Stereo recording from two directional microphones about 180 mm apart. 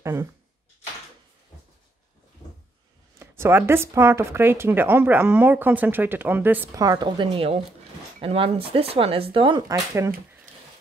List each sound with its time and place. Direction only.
0.0 s speech: 15° right (ahead or behind)
3.2 s speech: 15° right (ahead or behind)